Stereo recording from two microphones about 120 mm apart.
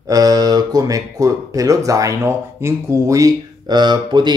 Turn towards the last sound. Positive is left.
turn(degrees=-40)  # may be behind; listen again after turning